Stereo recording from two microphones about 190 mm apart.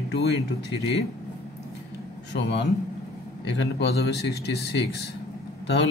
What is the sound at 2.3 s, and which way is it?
Speech, 65° left (ahead or behind).